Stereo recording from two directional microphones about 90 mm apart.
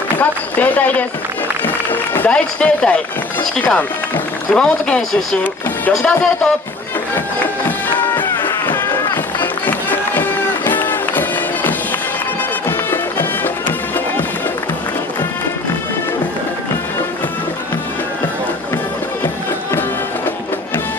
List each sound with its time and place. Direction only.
0.2 s speech: 20° left (ahead or behind)
7.6 s music: 25° left (ahead or behind)